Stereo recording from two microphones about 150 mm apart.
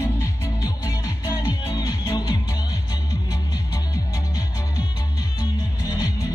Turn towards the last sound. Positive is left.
turn(degrees=20)  # may be behind; listen again after turning